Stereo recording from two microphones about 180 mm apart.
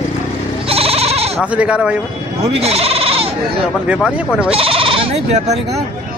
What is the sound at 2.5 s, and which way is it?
Sheep, 35° right (ahead or behind).